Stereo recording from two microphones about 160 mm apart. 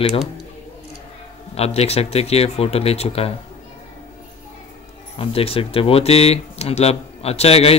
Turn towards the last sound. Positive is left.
turn(degrees=40)  # may be behind; listen again after turning